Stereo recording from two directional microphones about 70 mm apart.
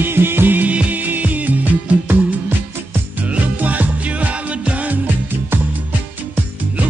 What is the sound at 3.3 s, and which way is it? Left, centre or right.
Music, right.